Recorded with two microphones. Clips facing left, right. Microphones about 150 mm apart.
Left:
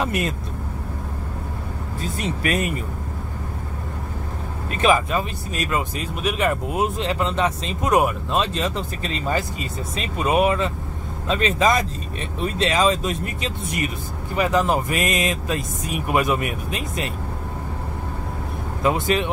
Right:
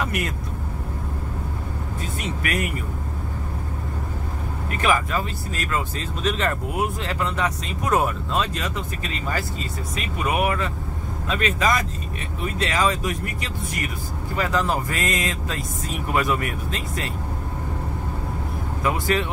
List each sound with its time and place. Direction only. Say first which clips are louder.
0.0 s speech: left 3 dB; 25° left (ahead or behind)
2.1 s speech: left 4 dB; 25° left (ahead or behind)
4.6 s speech: left 4 dB; 20° left (ahead or behind)
18.8 s speech: left 3 dB; 20° left (ahead or behind)